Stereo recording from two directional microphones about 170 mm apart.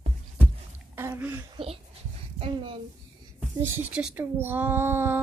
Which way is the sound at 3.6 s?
10° right (ahead or behind).